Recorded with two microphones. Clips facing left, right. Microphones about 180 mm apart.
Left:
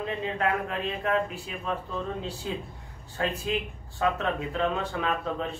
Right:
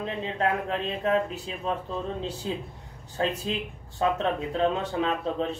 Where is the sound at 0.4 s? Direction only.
25° right (ahead or behind).